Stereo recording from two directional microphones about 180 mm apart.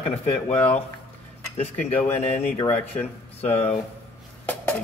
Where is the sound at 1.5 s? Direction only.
35° left (ahead or behind).